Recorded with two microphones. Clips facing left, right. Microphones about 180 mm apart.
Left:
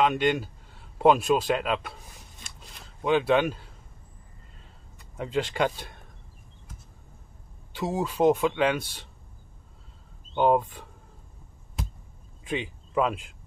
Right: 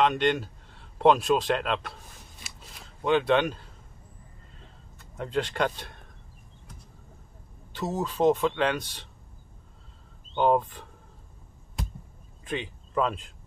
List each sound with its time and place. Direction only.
0.0 s speech: 5° left (ahead or behind)
2.4 s a sound: 5° right (ahead or behind)
4.9 s speech: 5° left (ahead or behind)
7.7 s speech: 10° left (ahead or behind)
10.3 s speech: 5° left (ahead or behind)
12.4 s speech: 10° left (ahead or behind)